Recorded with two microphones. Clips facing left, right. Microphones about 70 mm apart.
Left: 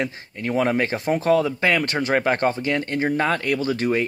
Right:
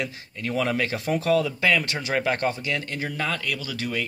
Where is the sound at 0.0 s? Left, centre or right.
Left.